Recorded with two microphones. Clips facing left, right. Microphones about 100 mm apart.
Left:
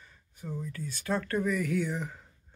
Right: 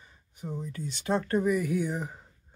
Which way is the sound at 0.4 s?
20° right (ahead or behind).